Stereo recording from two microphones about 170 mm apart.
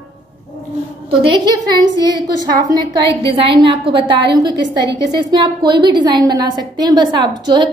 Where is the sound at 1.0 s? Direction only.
30° right (ahead or behind).